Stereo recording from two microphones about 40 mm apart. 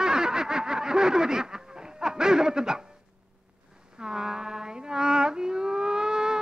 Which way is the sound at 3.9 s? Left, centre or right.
Centre.